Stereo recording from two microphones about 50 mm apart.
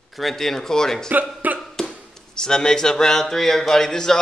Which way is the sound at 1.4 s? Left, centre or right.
Right.